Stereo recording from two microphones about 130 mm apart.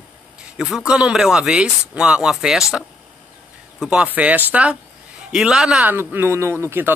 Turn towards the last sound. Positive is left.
turn(degrees=-15)  # may be behind; listen again after turning